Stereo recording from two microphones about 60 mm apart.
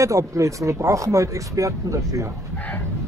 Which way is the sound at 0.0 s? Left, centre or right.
Right.